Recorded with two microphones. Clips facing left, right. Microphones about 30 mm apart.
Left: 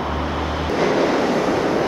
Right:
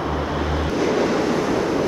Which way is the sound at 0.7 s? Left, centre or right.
Centre.